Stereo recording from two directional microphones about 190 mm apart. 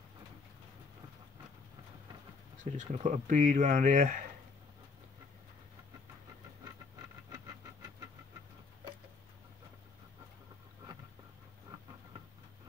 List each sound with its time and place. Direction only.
2.6 s speech: 40° right (ahead or behind)